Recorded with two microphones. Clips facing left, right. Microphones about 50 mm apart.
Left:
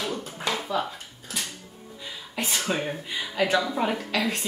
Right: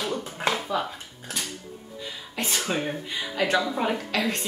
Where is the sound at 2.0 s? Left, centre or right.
Centre.